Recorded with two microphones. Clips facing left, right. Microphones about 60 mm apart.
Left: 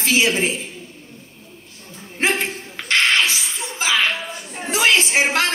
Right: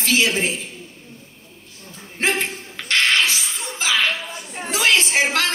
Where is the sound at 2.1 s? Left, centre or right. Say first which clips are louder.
Left 1 dB; left.